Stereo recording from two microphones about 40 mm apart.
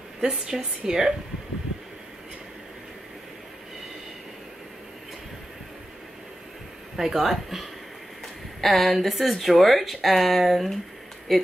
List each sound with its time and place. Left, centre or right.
0.2 s a woman's voice: centre
7.0 s a woman's voice: centre
8.5 s speech: centre